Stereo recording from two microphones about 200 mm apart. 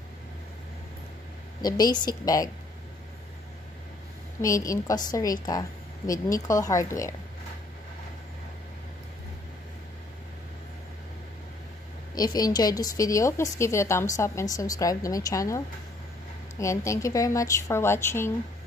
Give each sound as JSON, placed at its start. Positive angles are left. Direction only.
{"t": 1.6, "sound": "a woman's voice", "side_deg": 20}
{"t": 4.4, "sound": "a woman's voice", "side_deg": 15}
{"t": 12.2, "sound": "a woman's voice", "side_deg": 20}